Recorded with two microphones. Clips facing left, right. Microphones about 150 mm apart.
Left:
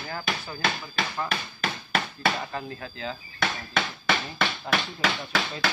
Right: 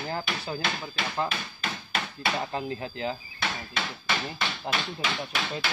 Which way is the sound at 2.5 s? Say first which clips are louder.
Right 3 dB; 20° right (ahead or behind).